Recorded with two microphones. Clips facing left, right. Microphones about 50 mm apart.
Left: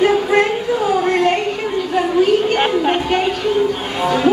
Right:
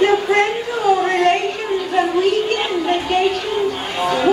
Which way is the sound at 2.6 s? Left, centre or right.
Left.